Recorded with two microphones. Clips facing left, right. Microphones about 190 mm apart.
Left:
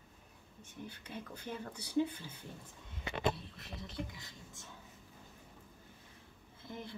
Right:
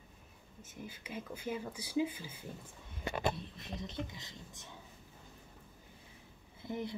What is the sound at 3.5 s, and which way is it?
Speech, 20° right (ahead or behind).